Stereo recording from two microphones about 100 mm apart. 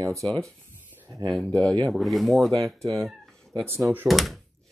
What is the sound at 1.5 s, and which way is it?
Speech, 10° left (ahead or behind).